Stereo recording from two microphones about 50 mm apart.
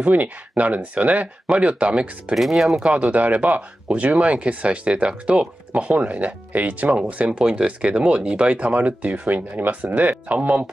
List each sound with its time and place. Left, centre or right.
0.0 s speech: right
2.3 s speech: centre
2.8 s speech: right